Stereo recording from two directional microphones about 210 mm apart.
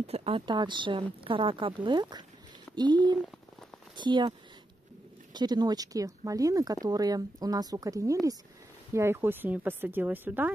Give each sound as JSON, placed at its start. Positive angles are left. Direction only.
{"t": 0.0, "sound": "speech", "side_deg": -30}